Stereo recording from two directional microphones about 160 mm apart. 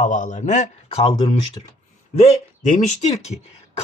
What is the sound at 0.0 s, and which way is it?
Speech, 50° left (ahead or behind).